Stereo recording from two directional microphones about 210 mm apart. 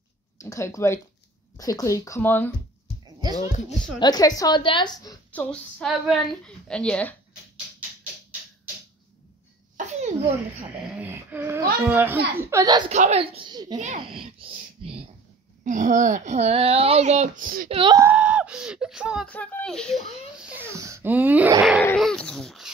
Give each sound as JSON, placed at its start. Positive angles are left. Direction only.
{"t": 0.4, "sound": "speech", "side_deg": 15}
{"t": 3.2, "sound": "a sound", "side_deg": -20}
{"t": 4.0, "sound": "a woman's voice", "side_deg": 20}
{"t": 5.3, "sound": "a woman's voice", "side_deg": 5}
{"t": 9.8, "sound": "a sound", "side_deg": -35}
{"t": 11.0, "sound": "a sound", "side_deg": -10}
{"t": 12.9, "sound": "speech", "side_deg": -30}
{"t": 13.7, "sound": "a child's voice", "side_deg": -35}
{"t": 14.4, "sound": "speech", "side_deg": -25}
{"t": 15.6, "sound": "a child's voice", "side_deg": -35}
{"t": 17.6, "sound": "speech", "side_deg": -25}
{"t": 18.0, "sound": "a child's voice", "side_deg": -5}